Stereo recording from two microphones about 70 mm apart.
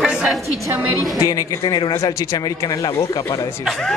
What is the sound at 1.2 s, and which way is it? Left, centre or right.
Speech, left.